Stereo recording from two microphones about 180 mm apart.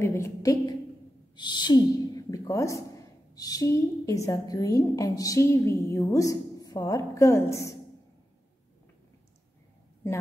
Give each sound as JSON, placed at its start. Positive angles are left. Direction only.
{"t": 0.0, "sound": "a woman's voice", "side_deg": 15}
{"t": 1.3, "sound": "a sound", "side_deg": 25}
{"t": 3.3, "sound": "a woman's voice", "side_deg": 20}